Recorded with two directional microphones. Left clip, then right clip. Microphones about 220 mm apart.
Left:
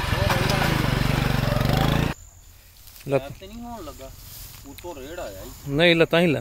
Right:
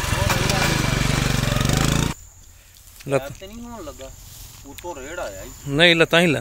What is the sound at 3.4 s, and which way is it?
Speech, 35° right (ahead or behind).